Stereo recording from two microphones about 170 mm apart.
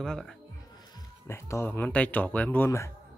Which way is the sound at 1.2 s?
15° left (ahead or behind).